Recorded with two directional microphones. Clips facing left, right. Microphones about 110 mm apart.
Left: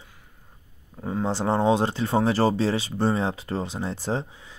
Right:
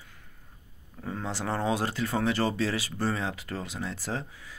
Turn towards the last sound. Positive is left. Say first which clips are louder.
# left 6 dB
turn(degrees=25)  # may be behind; listen again after turning